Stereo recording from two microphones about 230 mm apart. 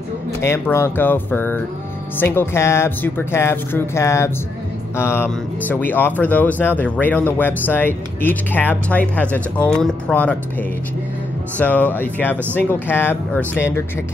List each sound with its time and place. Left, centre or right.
0.4 s speech: centre
11.5 s speech: centre